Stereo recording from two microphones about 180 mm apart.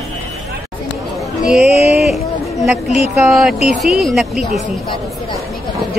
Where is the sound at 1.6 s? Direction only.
35° left (ahead or behind).